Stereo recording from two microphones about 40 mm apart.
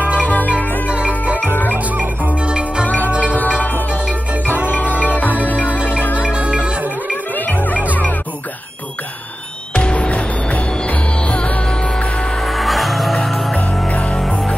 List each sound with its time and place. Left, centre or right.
0.3 s music: left
0.8 s music: right
2.4 s music: right
4.6 s music: left
5.6 s music: right
7.3 s music: left
9.8 s music: left
12.4 s music: centre
13.8 s music: left